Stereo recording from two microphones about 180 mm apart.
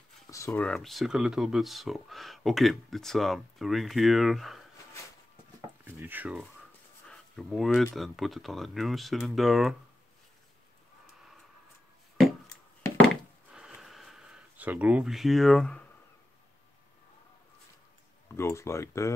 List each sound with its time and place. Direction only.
0.5 s speech: 5° left (ahead or behind)
5.9 s speech: 10° right (ahead or behind)
13.5 s a sound: 5° right (ahead or behind)
18.3 s speech: 15° left (ahead or behind)